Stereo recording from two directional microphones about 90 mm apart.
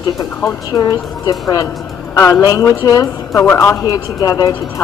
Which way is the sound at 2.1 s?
35° left (ahead or behind).